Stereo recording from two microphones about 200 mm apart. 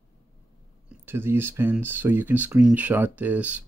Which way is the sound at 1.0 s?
10° right (ahead or behind).